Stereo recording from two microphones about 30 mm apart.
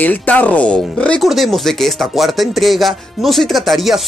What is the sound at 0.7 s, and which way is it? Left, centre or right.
Speech, left.